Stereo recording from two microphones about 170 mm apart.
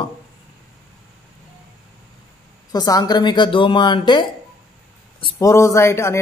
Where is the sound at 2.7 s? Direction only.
20° left (ahead or behind).